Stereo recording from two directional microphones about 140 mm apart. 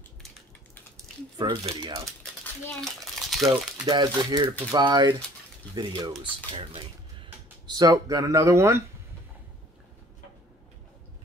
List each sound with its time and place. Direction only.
1.4 s speech: 30° right (ahead or behind)
3.2 s crumpling: centre (ahead or behind)
3.8 s speech: 30° right (ahead or behind)
6.6 s a sound: 40° right (ahead or behind)
7.7 s speech: 25° right (ahead or behind)